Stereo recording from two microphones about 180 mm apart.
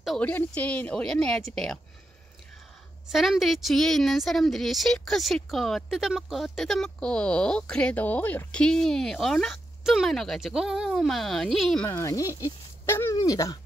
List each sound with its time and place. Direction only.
0.0 s a woman's voice: 5° left (ahead or behind)
3.1 s a woman's voice: centre (ahead or behind)
11.9 s speech: 15° left (ahead or behind)